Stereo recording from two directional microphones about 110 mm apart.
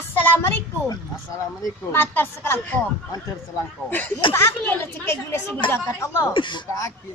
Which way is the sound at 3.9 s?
15° left (ahead or behind).